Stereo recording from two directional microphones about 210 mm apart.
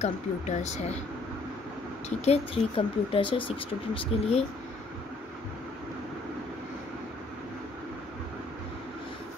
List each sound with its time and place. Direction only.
0.0 s speech: 35° left (ahead or behind)
2.0 s speech: 30° left (ahead or behind)